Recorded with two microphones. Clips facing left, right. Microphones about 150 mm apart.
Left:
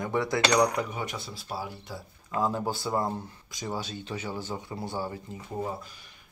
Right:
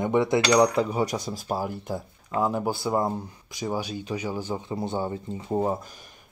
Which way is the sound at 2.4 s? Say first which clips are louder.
Right 3 dB; 15° right (ahead or behind).